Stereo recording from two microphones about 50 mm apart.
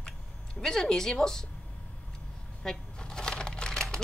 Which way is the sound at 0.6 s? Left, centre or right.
Centre.